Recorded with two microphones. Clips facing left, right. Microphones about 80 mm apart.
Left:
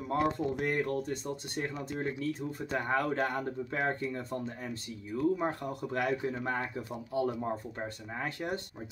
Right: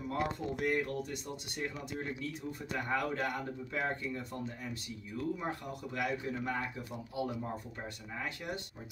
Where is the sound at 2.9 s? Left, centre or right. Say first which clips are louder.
Left 3 dB; left.